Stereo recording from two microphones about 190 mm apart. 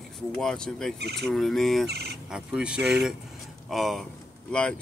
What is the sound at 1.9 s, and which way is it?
Speech, 60° right (ahead or behind).